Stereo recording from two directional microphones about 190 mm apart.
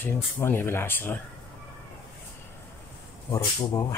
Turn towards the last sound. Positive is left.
turn(degrees=20)  # may be behind; listen again after turning